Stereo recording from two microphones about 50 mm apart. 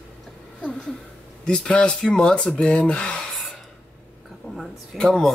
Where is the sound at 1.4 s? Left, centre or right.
Centre.